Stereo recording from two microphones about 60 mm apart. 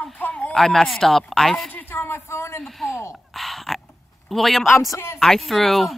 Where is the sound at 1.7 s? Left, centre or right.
Left.